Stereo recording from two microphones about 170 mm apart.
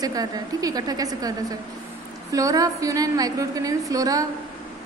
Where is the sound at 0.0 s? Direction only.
20° right (ahead or behind).